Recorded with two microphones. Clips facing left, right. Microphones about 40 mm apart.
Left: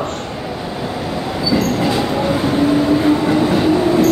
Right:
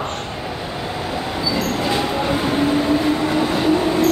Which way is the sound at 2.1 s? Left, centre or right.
Centre.